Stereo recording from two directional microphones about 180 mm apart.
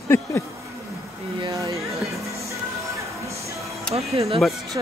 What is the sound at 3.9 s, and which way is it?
Music, 35° right (ahead or behind).